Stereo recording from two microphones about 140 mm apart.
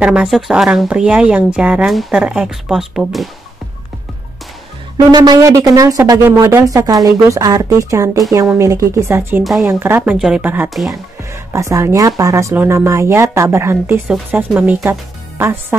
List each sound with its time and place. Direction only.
0.0 s speech: 5° right (ahead or behind)
5.1 s speech: 30° right (ahead or behind)
9.4 s speech: centre (ahead or behind)
9.7 s speech: 15° right (ahead or behind)
10.1 s speech: 5° right (ahead or behind)
10.7 s speech: centre (ahead or behind)
11.5 s speech: 20° right (ahead or behind)